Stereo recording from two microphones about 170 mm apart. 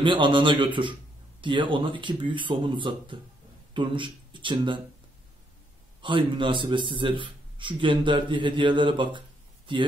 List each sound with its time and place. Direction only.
0.0 s a man's voice: 30° right (ahead or behind)
5.9 s a man's voice: 30° right (ahead or behind)